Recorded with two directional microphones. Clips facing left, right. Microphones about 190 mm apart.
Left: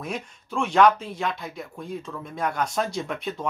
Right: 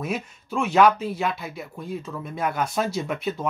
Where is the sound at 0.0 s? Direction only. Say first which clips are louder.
Right 3 dB; 5° right (ahead or behind).